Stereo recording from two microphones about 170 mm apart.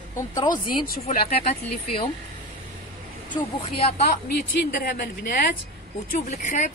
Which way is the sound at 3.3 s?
35° left (ahead or behind).